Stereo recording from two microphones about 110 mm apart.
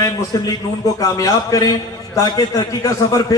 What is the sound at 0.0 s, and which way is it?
A man's voice, 35° left (ahead or behind).